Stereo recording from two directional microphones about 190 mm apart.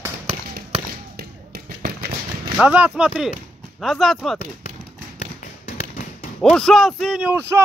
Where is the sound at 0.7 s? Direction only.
35° right (ahead or behind).